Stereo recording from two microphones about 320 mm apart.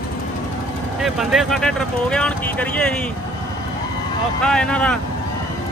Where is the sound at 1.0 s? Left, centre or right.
Centre.